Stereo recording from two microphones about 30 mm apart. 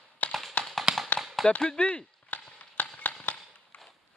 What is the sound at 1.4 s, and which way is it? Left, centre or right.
Chop, centre.